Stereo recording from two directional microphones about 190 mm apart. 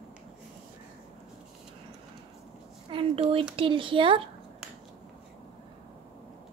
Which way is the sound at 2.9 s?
30° right (ahead or behind).